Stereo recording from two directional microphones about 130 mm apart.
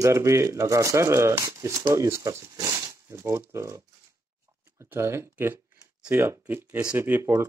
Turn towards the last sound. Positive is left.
turn(degrees=-15)  # may be behind; listen again after turning